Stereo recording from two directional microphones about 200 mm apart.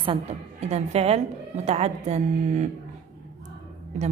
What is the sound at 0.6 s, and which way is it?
A woman's voice, 35° right (ahead or behind).